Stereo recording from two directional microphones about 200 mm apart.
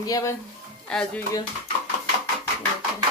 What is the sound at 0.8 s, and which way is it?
Speech, 5° left (ahead or behind).